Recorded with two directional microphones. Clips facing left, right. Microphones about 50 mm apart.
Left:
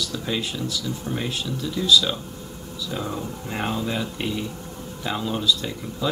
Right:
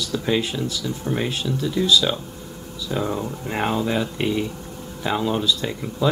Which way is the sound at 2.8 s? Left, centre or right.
Centre.